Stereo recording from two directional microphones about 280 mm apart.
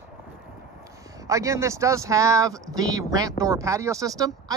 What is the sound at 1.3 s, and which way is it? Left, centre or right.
Speech, centre.